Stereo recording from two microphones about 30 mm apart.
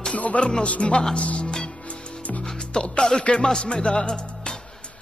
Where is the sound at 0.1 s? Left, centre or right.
Left.